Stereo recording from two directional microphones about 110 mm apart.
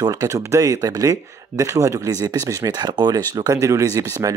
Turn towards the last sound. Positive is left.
turn(degrees=-30)  # may be behind; listen again after turning